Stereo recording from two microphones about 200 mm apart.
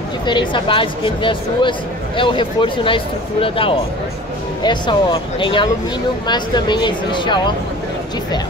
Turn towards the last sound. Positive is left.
turn(degrees=20)  # may be behind; listen again after turning